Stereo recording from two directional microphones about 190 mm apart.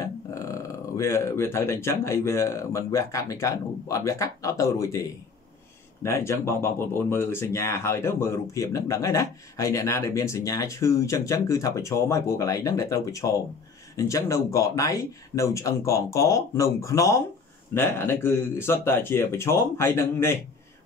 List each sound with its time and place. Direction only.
0.0 s speech: 15° left (ahead or behind)
6.0 s speech: 15° left (ahead or behind)